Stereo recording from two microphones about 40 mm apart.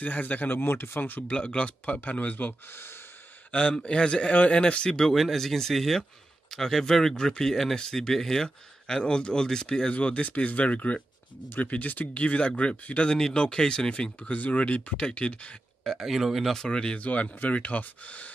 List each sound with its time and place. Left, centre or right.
0.0 s speech: left
0.6 s speech: left
1.3 s speech: left
2.0 s speech: left
2.7 s speech: left
3.8 s speech: left
5.1 s speech: centre; by 12.2 s left
12.2 s speech: left
13.1 s speech: centre
14.3 s speech: left
16.0 s speech: centre
16.5 s speech: centre
17.0 s speech: left